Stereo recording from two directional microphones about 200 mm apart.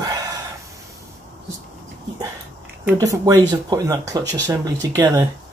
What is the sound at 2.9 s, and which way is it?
Speech, 20° right (ahead or behind).